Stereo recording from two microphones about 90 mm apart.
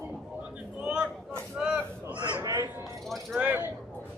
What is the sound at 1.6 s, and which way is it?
Honk, 10° right (ahead or behind).